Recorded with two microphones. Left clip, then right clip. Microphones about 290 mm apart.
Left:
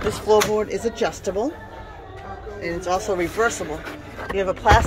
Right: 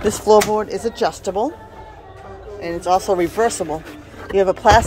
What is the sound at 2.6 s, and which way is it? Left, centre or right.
Speech, centre.